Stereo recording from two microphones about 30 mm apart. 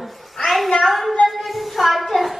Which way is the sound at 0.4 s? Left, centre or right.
Centre.